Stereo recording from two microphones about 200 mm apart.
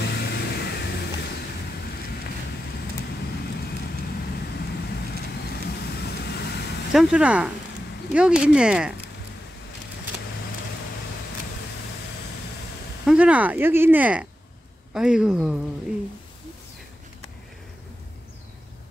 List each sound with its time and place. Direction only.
0.0 s vehicle: 55° left (ahead or behind)
4.4 s vehicle: 55° left (ahead or behind)
6.9 s speech: 5° right (ahead or behind)
13.0 s speech: 5° right (ahead or behind)